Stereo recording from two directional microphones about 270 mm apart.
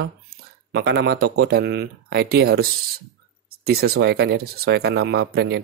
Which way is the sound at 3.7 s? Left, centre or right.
Right.